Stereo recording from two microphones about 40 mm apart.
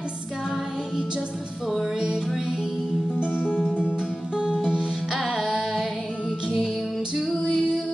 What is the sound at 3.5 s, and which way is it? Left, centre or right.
Music, centre.